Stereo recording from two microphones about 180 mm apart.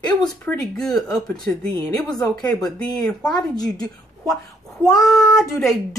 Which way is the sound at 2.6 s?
5° left (ahead or behind).